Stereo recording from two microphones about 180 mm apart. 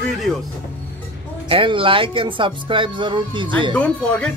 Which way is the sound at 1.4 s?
30° right (ahead or behind).